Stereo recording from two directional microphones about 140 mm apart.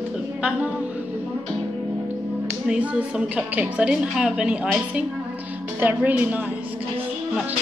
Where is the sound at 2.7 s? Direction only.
10° right (ahead or behind).